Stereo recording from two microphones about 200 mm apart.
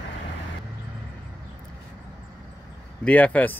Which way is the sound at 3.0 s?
5° left (ahead or behind).